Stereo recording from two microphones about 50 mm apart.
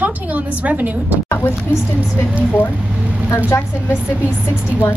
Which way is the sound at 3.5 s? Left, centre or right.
Left.